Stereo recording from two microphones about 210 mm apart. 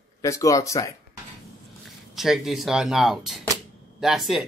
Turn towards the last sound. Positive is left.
turn(degrees=0)  # may be behind; listen again after turning